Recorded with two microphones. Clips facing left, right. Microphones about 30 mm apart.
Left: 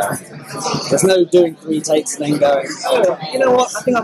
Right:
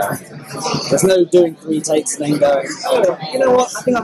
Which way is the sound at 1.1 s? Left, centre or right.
Centre.